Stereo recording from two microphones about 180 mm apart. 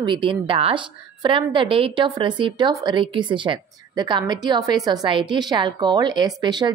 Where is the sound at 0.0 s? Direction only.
25° right (ahead or behind).